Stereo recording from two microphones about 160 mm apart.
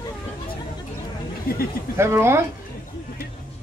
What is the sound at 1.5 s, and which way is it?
Speech, 65° left (ahead or behind).